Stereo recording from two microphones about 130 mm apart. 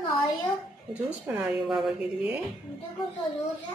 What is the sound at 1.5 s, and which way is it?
Speech, centre (ahead or behind).